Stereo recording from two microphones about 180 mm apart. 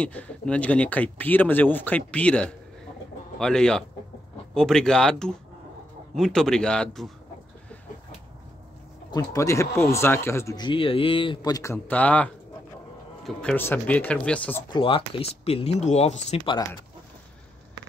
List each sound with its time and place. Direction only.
0.0 s speech: 5° left (ahead or behind)
9.1 s speech: 20° left (ahead or behind)
14.7 s speech: 30° left (ahead or behind)